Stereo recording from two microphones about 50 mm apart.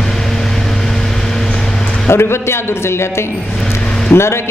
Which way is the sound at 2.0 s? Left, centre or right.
Left.